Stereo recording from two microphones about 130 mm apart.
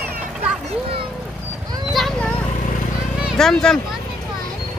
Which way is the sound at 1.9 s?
5° left (ahead or behind).